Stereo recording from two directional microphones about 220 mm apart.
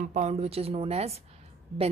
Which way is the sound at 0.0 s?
30° right (ahead or behind).